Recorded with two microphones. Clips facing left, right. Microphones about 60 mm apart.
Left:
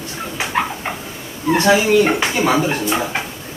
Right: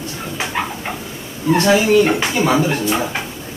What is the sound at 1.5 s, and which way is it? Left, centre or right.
Speech, left.